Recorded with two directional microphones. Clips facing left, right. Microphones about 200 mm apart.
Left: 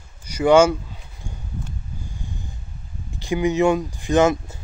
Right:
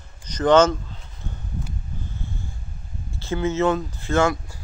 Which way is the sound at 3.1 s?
15° left (ahead or behind).